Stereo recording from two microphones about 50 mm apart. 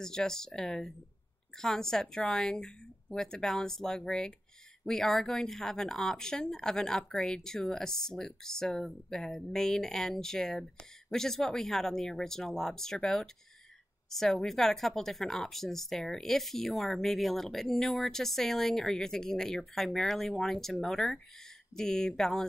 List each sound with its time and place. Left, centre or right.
0.0 s speech: centre